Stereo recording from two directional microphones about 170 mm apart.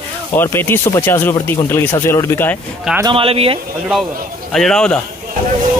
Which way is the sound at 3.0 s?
30° right (ahead or behind).